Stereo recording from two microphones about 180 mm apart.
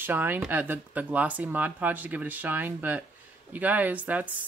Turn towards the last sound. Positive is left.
turn(degrees=-10)  # may be behind; listen again after turning